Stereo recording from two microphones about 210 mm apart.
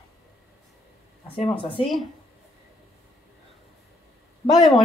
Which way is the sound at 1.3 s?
25° left (ahead or behind).